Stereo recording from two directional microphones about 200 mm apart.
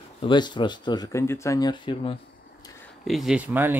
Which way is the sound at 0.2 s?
25° left (ahead or behind).